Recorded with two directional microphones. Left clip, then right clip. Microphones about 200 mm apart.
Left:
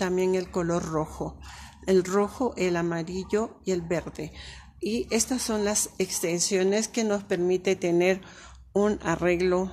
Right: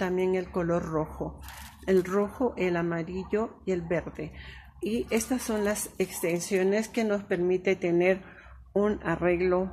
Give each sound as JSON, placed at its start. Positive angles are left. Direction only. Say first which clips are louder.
{"t": 0.0, "sound": "a woman's voice", "louder": "left 2 dB", "side_deg": 20}